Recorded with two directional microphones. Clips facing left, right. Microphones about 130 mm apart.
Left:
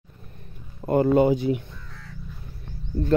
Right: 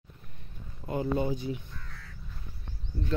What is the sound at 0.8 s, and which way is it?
Speech, 70° left (ahead or behind).